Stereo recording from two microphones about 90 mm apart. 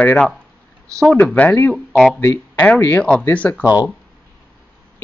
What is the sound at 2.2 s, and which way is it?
Speech, 25° left (ahead or behind).